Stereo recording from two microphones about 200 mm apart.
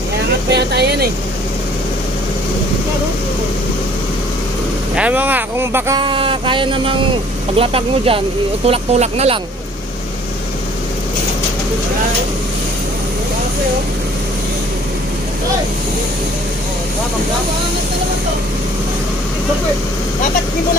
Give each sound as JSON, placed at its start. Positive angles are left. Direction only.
{"t": 0.5, "sound": "speech", "side_deg": -55}
{"t": 4.9, "sound": "speech", "side_deg": -5}
{"t": 5.9, "sound": "speech", "side_deg": -25}